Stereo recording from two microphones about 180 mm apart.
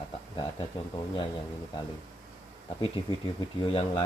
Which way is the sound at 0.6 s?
25° left (ahead or behind).